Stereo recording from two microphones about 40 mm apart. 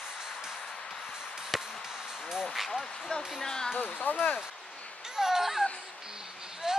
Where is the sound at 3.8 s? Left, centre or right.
Left.